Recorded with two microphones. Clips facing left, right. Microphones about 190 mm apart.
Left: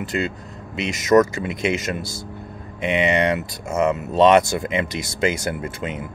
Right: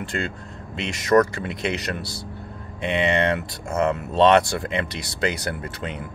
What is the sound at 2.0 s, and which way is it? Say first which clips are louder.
Speech: left 2 dB; 45° left (ahead or behind).